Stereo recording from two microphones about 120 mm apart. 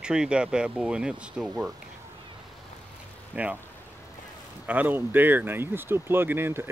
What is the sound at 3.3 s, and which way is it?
Speech, 10° right (ahead or behind).